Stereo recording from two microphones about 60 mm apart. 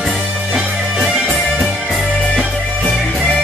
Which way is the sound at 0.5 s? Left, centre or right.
Centre.